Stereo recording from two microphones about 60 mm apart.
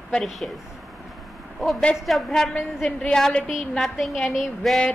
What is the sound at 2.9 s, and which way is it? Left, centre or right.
A woman's voice, centre.